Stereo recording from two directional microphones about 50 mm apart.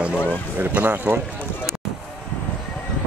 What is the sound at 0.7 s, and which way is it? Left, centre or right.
Speech, right.